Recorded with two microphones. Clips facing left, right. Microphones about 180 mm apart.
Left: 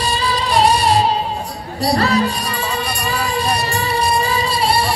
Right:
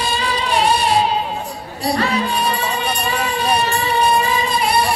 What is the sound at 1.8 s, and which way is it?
Speech, 40° left (ahead or behind).